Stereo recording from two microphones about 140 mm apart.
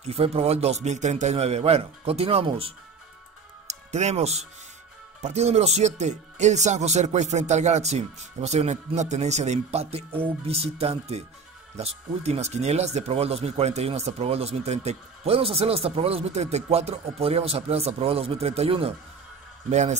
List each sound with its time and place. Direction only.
0.0 s speech: 45° right (ahead or behind)
3.6 s speech: 55° right (ahead or behind)
19.7 s speech: 55° right (ahead or behind)